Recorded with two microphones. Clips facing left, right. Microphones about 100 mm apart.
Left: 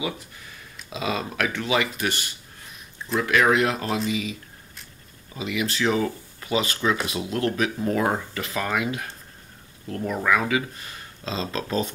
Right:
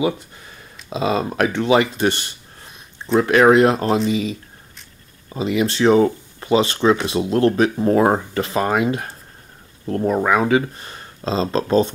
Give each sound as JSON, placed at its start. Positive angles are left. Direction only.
{"t": 0.8, "sound": "speech", "side_deg": -30}